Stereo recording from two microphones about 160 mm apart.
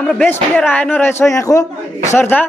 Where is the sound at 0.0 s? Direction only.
10° left (ahead or behind).